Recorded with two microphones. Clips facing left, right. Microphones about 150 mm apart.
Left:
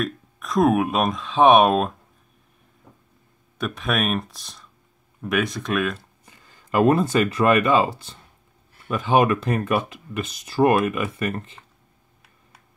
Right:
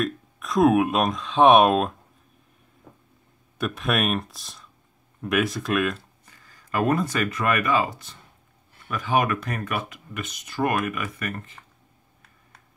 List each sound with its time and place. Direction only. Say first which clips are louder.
0.0 s speech: even; centre (ahead or behind)
3.5 s speech: even; centre (ahead or behind)
6.2 s speech: left 2 dB; 20° left (ahead or behind)